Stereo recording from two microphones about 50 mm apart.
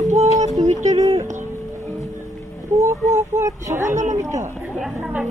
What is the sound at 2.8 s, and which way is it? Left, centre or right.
Speech, right.